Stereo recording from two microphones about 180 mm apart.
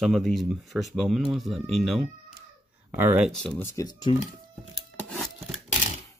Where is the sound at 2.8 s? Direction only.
10° right (ahead or behind).